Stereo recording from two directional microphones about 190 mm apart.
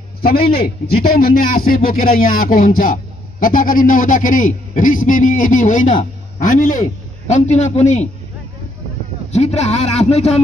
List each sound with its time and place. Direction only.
0.2 s a man's voice: 50° left (ahead or behind); by 8.1 s 35° left (ahead or behind)
9.3 s a man's voice: 35° left (ahead or behind)